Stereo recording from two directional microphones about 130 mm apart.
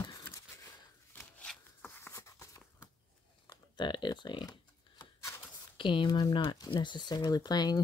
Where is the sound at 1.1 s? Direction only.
Centre (ahead or behind).